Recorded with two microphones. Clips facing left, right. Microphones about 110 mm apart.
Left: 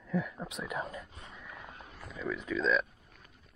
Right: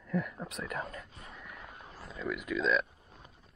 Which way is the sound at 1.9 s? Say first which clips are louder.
Right 1 dB; 30° right (ahead or behind).